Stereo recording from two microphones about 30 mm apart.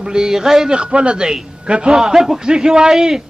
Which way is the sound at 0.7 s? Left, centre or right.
Right.